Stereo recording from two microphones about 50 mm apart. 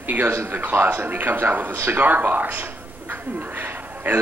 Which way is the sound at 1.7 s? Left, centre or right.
Right.